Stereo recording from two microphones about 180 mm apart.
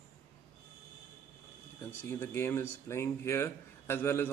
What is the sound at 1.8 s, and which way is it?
A man's voice, 10° left (ahead or behind).